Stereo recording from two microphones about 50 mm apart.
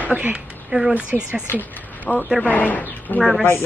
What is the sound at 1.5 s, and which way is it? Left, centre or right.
A woman's voice, left.